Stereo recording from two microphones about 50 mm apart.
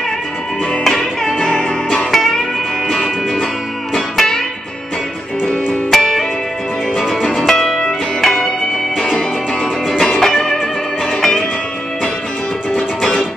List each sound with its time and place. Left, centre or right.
0.8 s music: centre
1.5 s music: centre
2.0 s music: centre
5.9 s music: centre
8.2 s music: centre
12.7 s music: centre